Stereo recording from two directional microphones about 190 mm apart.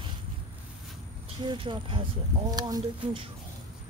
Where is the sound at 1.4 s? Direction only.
25° right (ahead or behind).